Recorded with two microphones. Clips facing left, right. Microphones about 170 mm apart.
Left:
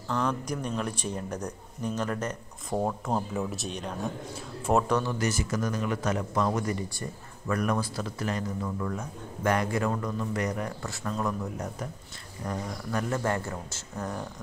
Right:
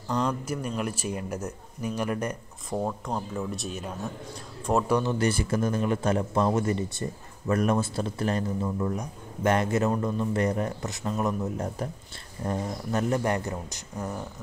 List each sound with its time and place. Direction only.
0.1 s speech: 15° right (ahead or behind)
2.7 s speech: 5° left (ahead or behind); by 5.1 s 15° right (ahead or behind)
5.2 s speech: 30° right (ahead or behind)
8.6 s speech: 20° right (ahead or behind)